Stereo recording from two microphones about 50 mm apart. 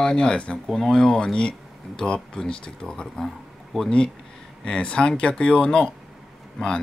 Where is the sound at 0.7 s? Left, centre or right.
Centre.